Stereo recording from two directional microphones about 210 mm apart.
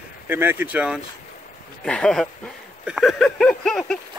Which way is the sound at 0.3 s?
10° right (ahead or behind).